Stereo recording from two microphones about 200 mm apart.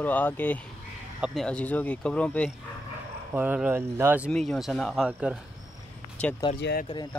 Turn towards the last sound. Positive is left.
turn(degrees=60)  # may be behind; listen again after turning